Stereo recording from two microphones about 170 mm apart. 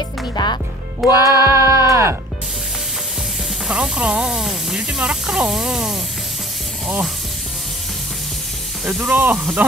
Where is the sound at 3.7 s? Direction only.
5° right (ahead or behind).